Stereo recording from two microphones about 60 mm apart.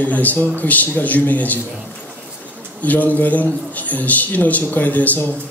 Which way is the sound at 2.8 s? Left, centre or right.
Left.